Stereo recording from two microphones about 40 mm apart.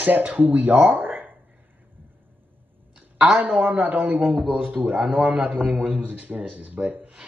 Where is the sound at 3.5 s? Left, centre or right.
Right.